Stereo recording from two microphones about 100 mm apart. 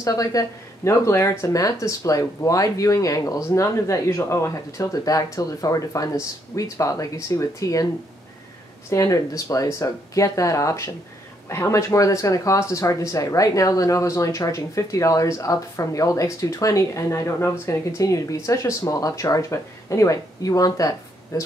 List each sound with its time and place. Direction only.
0.0 s speech: 35° left (ahead or behind)
8.9 s speech: 30° left (ahead or behind)